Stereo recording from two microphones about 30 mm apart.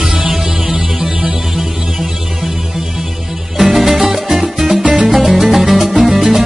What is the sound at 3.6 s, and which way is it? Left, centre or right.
Music, centre.